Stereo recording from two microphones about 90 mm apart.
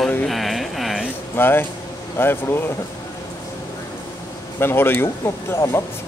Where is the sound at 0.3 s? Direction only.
Centre (ahead or behind).